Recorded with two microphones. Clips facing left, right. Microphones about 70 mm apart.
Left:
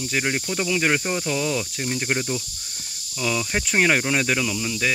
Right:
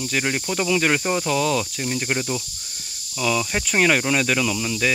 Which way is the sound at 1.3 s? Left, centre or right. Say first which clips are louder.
Right 3 dB; centre.